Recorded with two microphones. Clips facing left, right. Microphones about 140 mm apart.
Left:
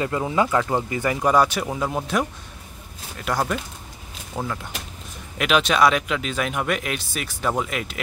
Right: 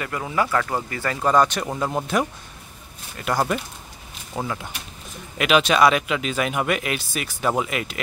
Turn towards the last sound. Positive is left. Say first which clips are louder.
# right 1 dB
turn(degrees=0)  # may be behind; listen again after turning